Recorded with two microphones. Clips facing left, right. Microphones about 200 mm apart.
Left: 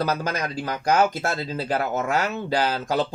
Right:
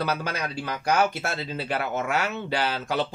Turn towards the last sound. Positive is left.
turn(degrees=40)  # may be behind; listen again after turning